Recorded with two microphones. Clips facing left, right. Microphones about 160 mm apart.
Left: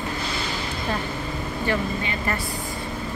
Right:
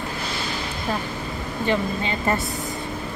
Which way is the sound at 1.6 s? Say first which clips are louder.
Right 3 dB; 25° right (ahead or behind).